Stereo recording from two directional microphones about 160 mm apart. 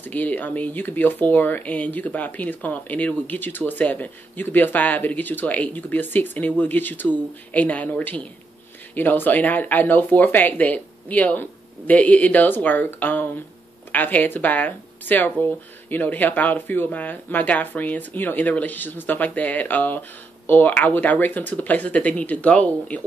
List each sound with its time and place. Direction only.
0.0 s speech: 10° left (ahead or behind)